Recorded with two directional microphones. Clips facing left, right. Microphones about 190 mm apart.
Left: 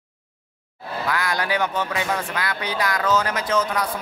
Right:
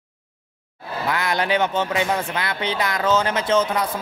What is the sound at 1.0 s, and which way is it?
A man's voice, 25° right (ahead or behind).